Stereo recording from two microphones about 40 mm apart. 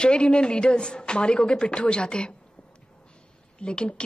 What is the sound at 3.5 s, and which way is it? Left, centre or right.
Speech, left.